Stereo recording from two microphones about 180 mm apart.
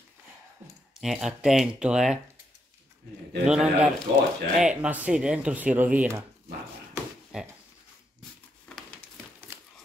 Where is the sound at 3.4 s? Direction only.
5° right (ahead or behind).